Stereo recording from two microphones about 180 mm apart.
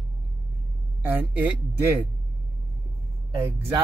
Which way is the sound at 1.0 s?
10° right (ahead or behind).